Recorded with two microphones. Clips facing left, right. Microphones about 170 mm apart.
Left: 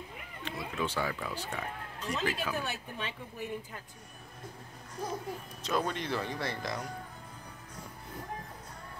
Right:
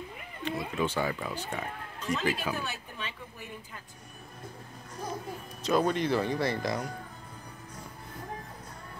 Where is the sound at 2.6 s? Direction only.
55° left (ahead or behind).